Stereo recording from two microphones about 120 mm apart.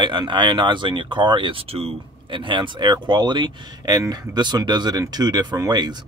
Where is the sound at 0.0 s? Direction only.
40° right (ahead or behind).